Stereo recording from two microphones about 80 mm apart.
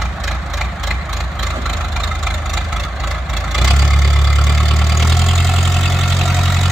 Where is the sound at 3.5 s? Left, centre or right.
Centre.